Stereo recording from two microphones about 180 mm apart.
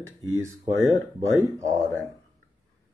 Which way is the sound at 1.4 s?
15° right (ahead or behind).